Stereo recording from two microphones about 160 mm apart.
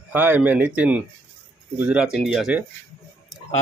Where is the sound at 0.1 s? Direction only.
10° right (ahead or behind).